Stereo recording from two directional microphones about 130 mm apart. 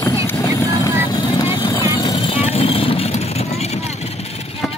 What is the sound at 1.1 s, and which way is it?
Vehicle, 30° left (ahead or behind).